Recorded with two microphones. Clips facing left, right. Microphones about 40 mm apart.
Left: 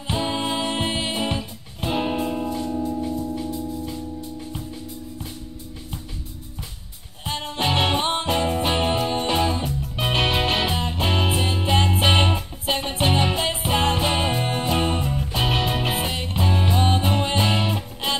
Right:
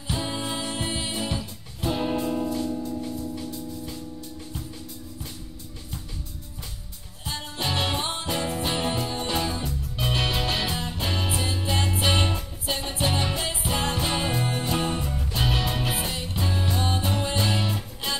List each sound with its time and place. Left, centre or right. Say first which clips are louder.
0.1 s music: left 5 dB; left
3.3 s music: left 6 dB; centre
7.2 s music: left 6 dB; left